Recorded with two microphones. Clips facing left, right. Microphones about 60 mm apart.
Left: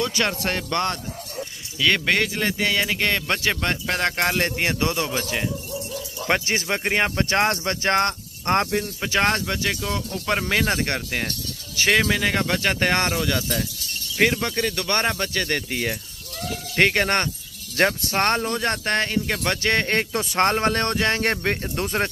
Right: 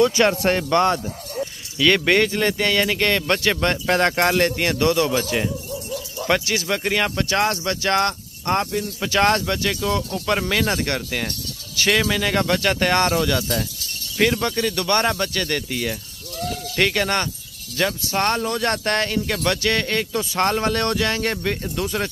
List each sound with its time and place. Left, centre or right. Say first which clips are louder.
0.0 s speech: right 7 dB; centre
1.8 s speech: right 4 dB; centre
3.8 s speech: right 5 dB; centre
4.4 s speech: right 3 dB; centre
6.2 s speech: right 1 dB; left
9.0 s speech: right 5 dB; centre
13.1 s speech: right 3 dB; centre
14.1 s speech: right 1 dB; centre; by 17.3 s left
17.7 s speech: left 2 dB; left
18.1 s speech: even; left
18.5 s speech: right 2 dB; centre
20.0 s speech: right 1 dB; left
20.3 s speech: left 1 dB; left